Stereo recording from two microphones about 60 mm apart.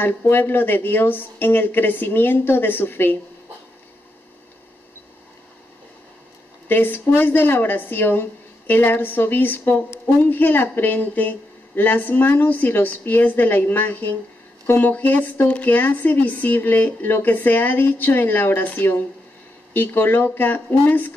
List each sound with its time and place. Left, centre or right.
0.0 s speech: left
6.7 s speech: left